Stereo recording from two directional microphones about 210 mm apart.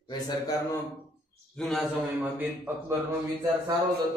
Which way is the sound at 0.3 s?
15° left (ahead or behind).